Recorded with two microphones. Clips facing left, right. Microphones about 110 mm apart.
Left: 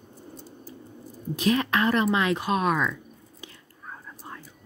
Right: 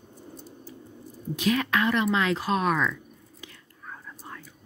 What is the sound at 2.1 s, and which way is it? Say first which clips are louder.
Speech: left 1 dB; 20° left (ahead or behind).